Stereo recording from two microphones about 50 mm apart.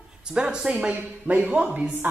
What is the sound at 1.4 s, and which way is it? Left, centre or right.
Speech, right.